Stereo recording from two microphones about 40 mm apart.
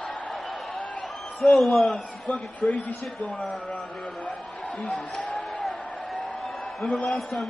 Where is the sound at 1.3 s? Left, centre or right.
Centre.